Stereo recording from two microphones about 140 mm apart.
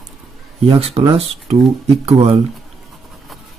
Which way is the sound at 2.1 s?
45° right (ahead or behind).